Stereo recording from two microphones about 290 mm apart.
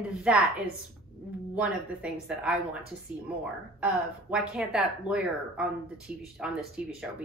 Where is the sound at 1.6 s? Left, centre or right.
Centre.